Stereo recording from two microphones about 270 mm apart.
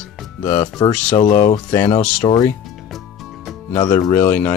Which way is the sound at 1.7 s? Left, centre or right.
Centre.